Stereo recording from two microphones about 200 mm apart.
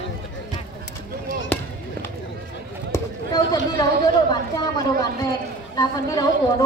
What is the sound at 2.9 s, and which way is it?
Basketball bounce, 20° left (ahead or behind).